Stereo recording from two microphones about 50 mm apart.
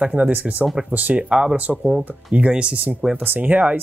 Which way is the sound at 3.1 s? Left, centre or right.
Right.